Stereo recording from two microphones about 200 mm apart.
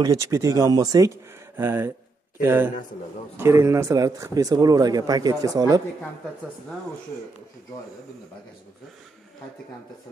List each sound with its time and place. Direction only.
0.0 s speech: 15° right (ahead or behind)